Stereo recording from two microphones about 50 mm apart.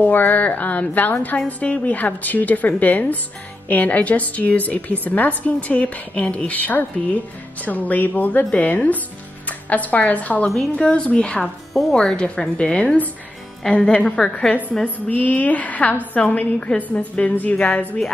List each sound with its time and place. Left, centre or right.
0.0 s a woman's voice: left
10.8 s a woman's voice: centre
11.4 s speech: centre
11.9 s a woman's voice: centre
15.0 s a woman's voice: left